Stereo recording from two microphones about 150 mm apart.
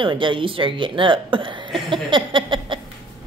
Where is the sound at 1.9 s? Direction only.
35° right (ahead or behind).